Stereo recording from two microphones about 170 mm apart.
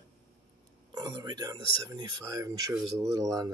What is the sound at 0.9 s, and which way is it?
Speech, 25° right (ahead or behind).